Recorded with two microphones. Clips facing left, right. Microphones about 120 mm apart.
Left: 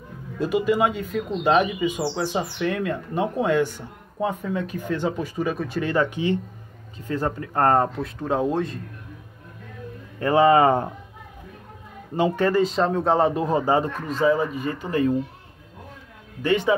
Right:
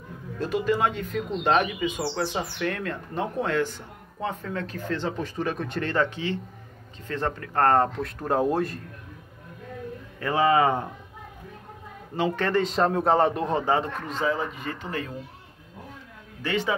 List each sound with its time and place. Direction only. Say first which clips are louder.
0.4 s speech: left 4 dB; 10° left (ahead or behind)
8.2 s speech: left 1 dB; 5° right (ahead or behind)
10.3 s speech: left 5 dB; 35° left (ahead or behind)
12.2 s speech: left 4 dB; 10° left (ahead or behind)
14.2 s speech: left 7 dB; 25° left (ahead or behind)
14.6 s speech: left 9 dB; 15° left (ahead or behind)